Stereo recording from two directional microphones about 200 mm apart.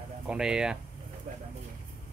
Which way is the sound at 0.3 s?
5° right (ahead or behind).